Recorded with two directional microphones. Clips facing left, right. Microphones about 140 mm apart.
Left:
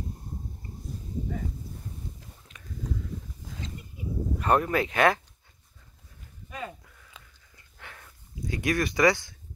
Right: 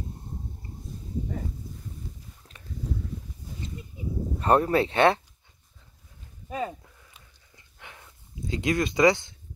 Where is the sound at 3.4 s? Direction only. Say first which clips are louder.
Right 1 dB; 90° left.